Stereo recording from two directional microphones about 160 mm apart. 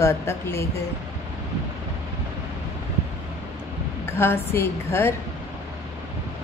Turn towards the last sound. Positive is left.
turn(degrees=15)  # may be behind; listen again after turning